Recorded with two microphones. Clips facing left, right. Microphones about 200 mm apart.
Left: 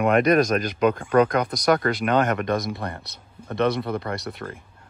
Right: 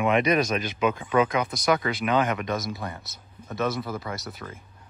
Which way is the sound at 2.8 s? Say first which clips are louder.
Left 3 dB; 60° left (ahead or behind).